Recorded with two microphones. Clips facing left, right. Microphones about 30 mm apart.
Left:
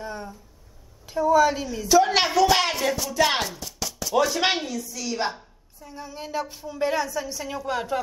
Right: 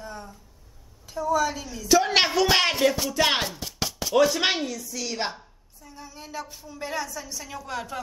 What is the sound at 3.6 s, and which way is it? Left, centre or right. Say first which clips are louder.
Chopping: right 2 dB; right.